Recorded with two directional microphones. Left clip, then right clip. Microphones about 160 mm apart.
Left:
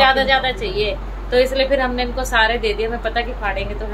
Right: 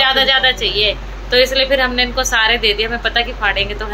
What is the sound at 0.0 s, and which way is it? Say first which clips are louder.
A woman's voice: right 2 dB; 5° left (ahead or behind).